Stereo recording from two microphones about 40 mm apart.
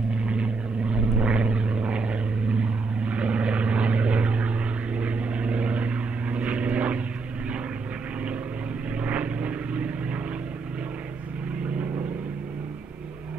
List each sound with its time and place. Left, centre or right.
0.3 s vehicle: right
9.0 s vehicle: right